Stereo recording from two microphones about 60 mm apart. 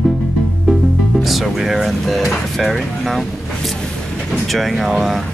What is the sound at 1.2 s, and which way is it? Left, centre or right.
Speech, centre.